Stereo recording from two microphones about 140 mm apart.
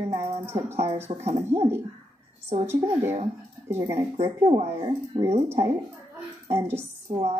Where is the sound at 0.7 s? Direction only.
50° right (ahead or behind).